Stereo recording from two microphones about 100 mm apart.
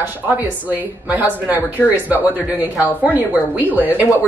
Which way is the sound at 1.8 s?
10° left (ahead or behind).